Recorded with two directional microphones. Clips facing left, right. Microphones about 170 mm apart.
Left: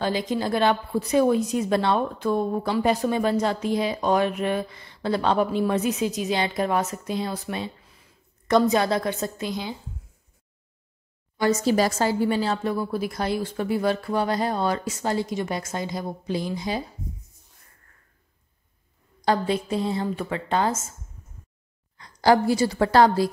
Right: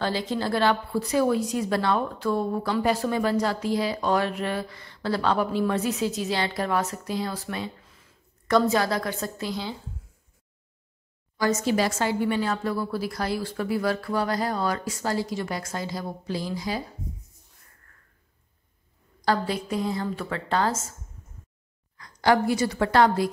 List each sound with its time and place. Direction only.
0.0 s a woman's voice: 15° left (ahead or behind)
11.6 s a woman's voice: 40° left (ahead or behind); by 16.8 s 25° left (ahead or behind)
19.2 s a woman's voice: 20° left (ahead or behind)
21.9 s a woman's voice: 30° left (ahead or behind)